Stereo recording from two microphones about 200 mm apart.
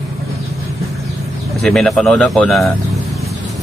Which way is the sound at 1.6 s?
Centre (ahead or behind).